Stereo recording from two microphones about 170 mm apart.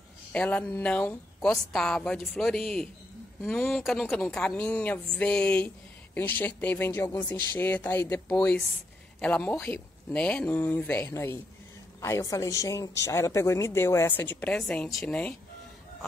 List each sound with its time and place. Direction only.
0.3 s speech: 10° left (ahead or behind)